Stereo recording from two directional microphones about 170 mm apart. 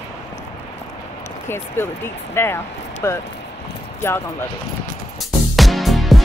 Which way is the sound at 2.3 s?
15° left (ahead or behind).